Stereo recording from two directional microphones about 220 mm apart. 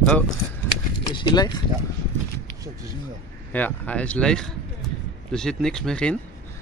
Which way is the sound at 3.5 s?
5° left (ahead or behind).